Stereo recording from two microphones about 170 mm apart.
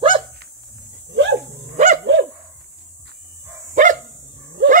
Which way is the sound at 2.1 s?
90° right.